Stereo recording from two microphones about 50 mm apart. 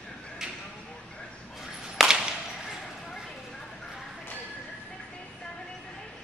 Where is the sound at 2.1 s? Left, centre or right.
Centre.